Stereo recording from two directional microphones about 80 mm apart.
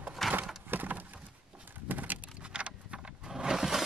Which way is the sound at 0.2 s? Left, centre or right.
Centre.